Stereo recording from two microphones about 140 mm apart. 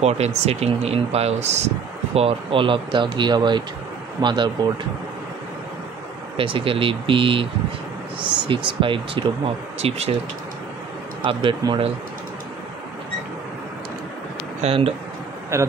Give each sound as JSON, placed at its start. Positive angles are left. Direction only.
{"t": 0.0, "sound": "speech", "side_deg": -50}
{"t": 2.1, "sound": "speech", "side_deg": -40}
{"t": 6.3, "sound": "speech", "side_deg": -40}
{"t": 9.8, "sound": "speech", "side_deg": -50}
{"t": 11.2, "sound": "speech", "side_deg": -35}
{"t": 14.6, "sound": "speech", "side_deg": -45}
{"t": 15.5, "sound": "a man's voice", "side_deg": -20}